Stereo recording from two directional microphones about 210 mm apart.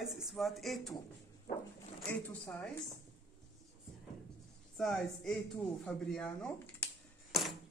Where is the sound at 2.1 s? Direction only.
10° left (ahead or behind).